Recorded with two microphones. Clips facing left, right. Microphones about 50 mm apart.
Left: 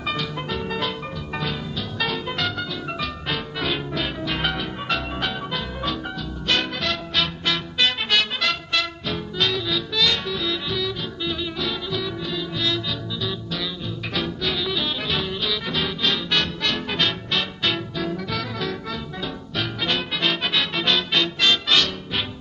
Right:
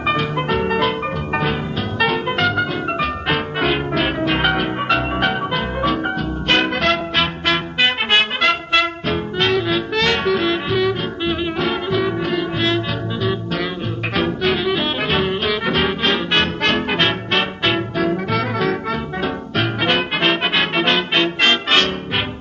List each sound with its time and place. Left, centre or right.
0.0 s music: right